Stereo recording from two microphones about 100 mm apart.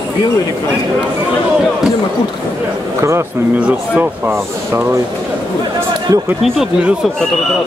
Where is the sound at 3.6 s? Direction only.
10° right (ahead or behind).